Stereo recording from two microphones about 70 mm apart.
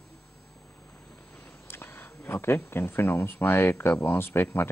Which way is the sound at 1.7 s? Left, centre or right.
Left.